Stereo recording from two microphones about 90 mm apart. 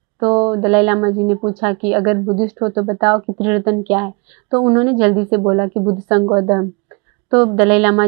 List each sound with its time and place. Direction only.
0.2 s speech: 25° right (ahead or behind)